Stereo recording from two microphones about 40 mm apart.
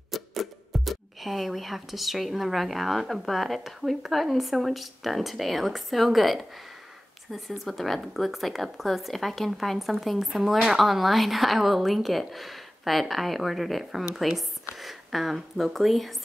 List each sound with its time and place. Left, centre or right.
0.1 s speech: centre